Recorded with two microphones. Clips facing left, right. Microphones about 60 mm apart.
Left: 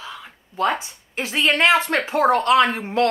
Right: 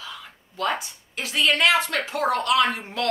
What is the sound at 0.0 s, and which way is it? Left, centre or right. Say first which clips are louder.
A woman's voice: left 3 dB; left.